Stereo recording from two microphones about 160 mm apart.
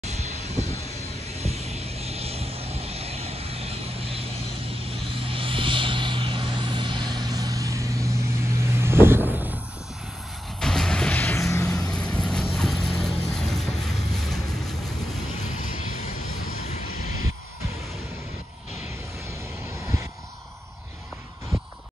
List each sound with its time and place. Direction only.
0.0 s vehicle: 45° right (ahead or behind); by 9.6 s 10° right (ahead or behind)
10.6 s music: 5° left (ahead or behind)
11.9 s vehicle: 5° left (ahead or behind)
13.3 s boat: centre (ahead or behind)